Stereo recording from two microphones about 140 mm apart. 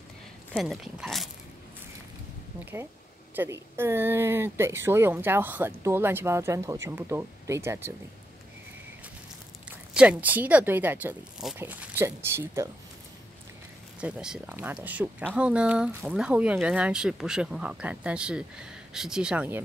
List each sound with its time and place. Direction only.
0.6 s speech: centre (ahead or behind)
2.6 s speech: 20° right (ahead or behind)
9.9 s speech: 10° right (ahead or behind)
14.0 s speech: 5° right (ahead or behind)